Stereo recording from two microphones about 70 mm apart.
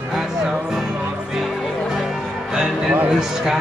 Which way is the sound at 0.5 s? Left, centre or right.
Centre.